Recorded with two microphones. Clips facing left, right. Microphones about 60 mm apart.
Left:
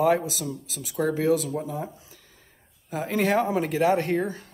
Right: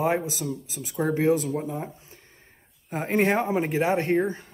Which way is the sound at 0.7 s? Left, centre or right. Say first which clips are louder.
Left 1 dB; right.